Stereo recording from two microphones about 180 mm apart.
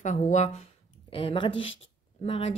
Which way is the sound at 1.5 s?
90° left.